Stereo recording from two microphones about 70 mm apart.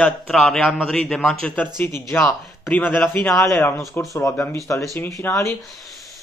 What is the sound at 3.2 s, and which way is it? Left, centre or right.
Speech, left.